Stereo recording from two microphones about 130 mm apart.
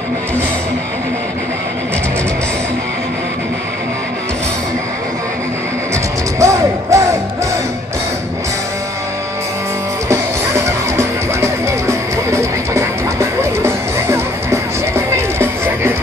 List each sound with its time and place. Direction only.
6.4 s music: 25° right (ahead or behind)
10.0 s music: 20° right (ahead or behind)